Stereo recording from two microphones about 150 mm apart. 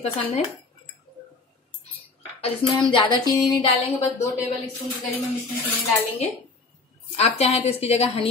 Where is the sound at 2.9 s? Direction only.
25° left (ahead or behind).